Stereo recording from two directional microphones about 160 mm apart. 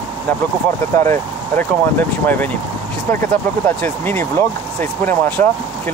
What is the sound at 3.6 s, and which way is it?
Speech, 10° left (ahead or behind).